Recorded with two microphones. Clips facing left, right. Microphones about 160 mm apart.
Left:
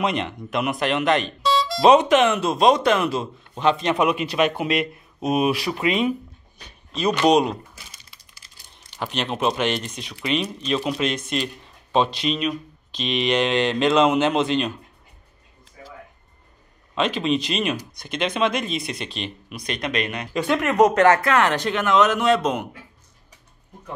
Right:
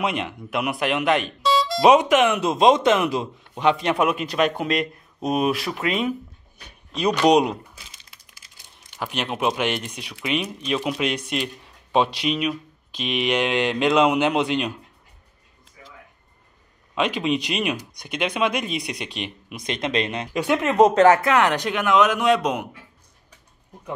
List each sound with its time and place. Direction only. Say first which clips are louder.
0.0 s speech: left 2 dB; 5° right (ahead or behind)
6.6 s a sound: even; 15° right (ahead or behind)
7.2 s speech: right 1 dB; 15° right (ahead or behind)
9.0 s speech: left 1 dB; 10° right (ahead or behind)
16.9 s speech: left 1 dB; 10° right (ahead or behind)
20.3 s speech: right 1 dB; 15° right (ahead or behind)